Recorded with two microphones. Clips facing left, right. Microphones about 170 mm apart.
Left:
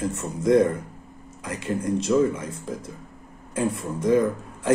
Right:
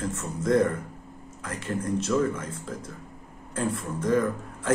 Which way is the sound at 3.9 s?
15° left (ahead or behind).